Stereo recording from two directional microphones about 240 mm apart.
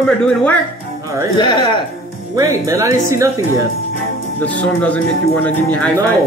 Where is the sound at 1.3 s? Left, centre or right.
Centre.